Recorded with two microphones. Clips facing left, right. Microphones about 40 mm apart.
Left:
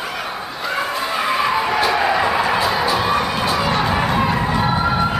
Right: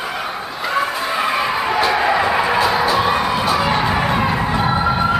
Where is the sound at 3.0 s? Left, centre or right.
Centre.